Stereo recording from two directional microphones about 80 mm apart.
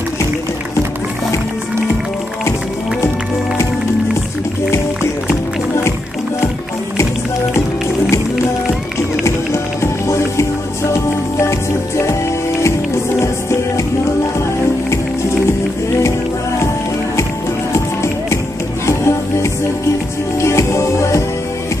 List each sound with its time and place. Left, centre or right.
10.0 s music: left
13.2 s music: left
17.7 s music: left